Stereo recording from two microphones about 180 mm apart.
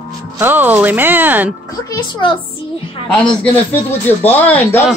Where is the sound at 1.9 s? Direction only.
25° left (ahead or behind).